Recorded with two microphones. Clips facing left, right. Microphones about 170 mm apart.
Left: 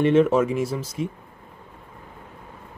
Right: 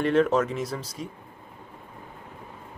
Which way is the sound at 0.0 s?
5° left (ahead or behind).